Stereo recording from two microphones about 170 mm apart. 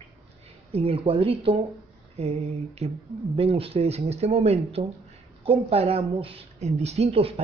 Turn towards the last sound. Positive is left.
turn(degrees=-35)  # may be behind; listen again after turning